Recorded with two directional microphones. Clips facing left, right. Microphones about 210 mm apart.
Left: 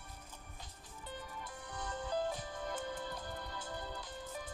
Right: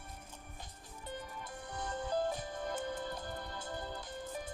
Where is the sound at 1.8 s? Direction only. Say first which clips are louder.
Right 2 dB; 50° right (ahead or behind).